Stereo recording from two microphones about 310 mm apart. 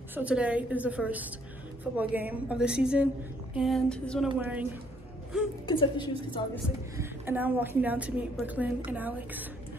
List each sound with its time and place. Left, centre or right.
0.1 s a woman's voice: centre
5.7 s a woman's voice: centre
7.0 s a woman's voice: centre